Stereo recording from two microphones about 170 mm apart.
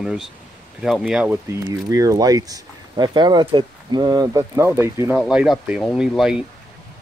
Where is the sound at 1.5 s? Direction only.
20° right (ahead or behind).